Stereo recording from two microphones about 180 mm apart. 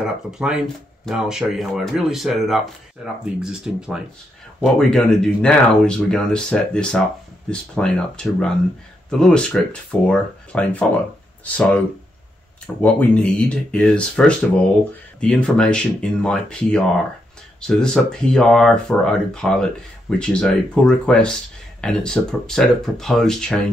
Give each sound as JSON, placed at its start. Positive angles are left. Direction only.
{"t": 0.0, "sound": "speech", "side_deg": -5}